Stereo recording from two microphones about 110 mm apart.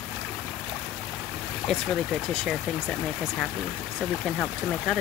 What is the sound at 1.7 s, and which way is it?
Speech, 5° left (ahead or behind).